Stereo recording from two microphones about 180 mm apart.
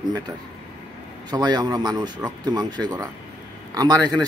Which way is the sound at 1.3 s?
25° right (ahead or behind).